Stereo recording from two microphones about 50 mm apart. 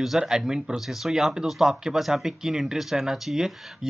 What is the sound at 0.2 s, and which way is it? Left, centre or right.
Speech, centre.